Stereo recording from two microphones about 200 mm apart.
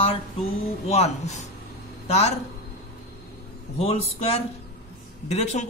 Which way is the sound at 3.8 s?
30° left (ahead or behind).